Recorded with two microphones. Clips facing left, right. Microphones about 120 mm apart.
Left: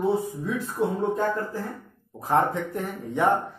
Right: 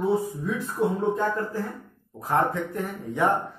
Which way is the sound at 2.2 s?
20° left (ahead or behind).